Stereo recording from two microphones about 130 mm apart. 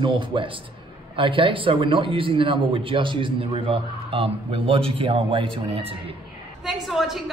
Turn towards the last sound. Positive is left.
turn(degrees=0)  # may be behind; listen again after turning